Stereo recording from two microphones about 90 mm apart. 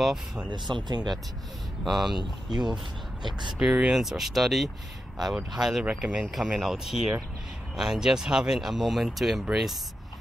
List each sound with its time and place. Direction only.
0.0 s speech: 5° right (ahead or behind)
0.5 s speech: 55° right (ahead or behind)
1.9 s speech: centre (ahead or behind)
3.3 s speech: 55° right (ahead or behind)
3.5 s speech: 10° right (ahead or behind)